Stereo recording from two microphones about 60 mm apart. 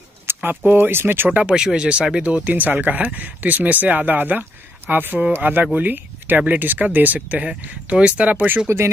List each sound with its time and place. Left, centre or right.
0.3 s a sound: right
0.7 s speech: right
1.3 s speech: centre
8.6 s speech: right